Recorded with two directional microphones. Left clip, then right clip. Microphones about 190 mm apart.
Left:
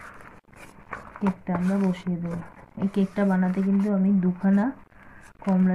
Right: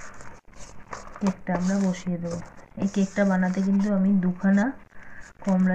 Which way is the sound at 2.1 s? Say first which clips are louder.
Even; 25° left (ahead or behind).